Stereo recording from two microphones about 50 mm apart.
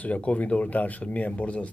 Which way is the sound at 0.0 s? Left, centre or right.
Left.